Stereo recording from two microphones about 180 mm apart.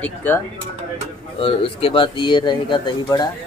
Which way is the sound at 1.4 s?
30° left (ahead or behind).